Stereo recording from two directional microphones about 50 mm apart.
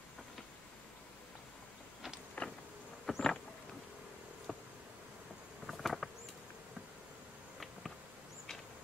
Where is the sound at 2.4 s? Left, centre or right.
Left.